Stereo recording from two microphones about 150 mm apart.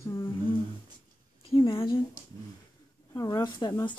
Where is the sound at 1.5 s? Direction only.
35° left (ahead or behind).